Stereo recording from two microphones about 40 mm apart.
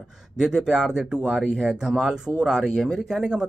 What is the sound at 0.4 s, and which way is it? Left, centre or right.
Speech, centre.